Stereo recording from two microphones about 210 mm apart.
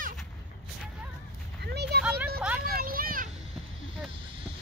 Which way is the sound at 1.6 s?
50° right (ahead or behind).